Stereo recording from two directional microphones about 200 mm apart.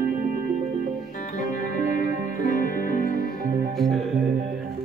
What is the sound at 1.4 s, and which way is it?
Music, 40° left (ahead or behind).